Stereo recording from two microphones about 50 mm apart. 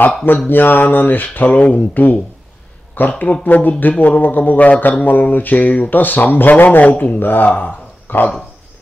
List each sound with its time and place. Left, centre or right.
0.5 s mantra: left
2.9 s speech: left
3.4 s mantra: left